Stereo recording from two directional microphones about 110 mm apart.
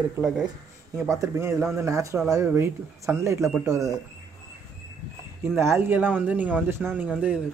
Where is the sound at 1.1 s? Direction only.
30° right (ahead or behind).